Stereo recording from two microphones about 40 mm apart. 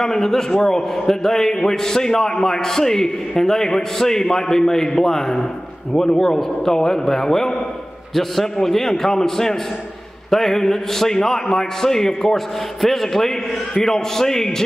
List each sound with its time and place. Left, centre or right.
0.0 s a man's voice: centre